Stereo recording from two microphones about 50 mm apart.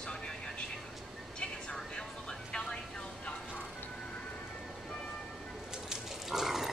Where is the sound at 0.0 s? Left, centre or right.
Centre.